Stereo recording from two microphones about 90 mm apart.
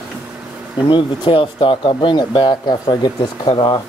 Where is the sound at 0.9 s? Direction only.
70° left (ahead or behind).